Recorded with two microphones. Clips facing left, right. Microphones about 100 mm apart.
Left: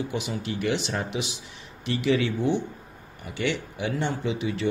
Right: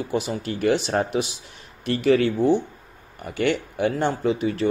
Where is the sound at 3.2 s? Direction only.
50° right (ahead or behind).